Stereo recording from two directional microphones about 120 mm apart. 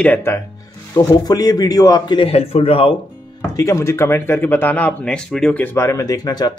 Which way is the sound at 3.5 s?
25° left (ahead or behind).